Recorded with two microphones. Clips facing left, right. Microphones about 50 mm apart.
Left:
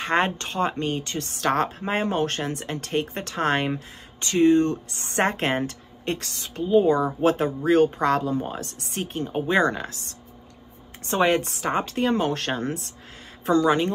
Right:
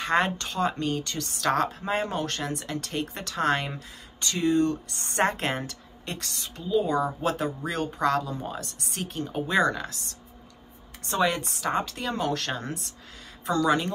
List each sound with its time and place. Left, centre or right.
0.0 s speech: left